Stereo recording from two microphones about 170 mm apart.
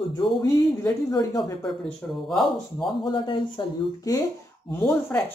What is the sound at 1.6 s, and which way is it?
Speech, centre (ahead or behind).